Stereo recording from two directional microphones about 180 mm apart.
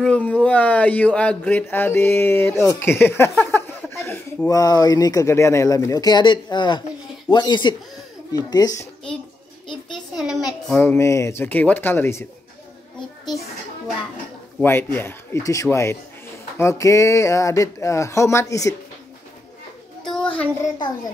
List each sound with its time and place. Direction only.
0.0 s a child's voice: 5° left (ahead or behind)
10.7 s speech: 10° left (ahead or behind)
14.6 s speech: 10° left (ahead or behind)
20.0 s a sound: 5° left (ahead or behind)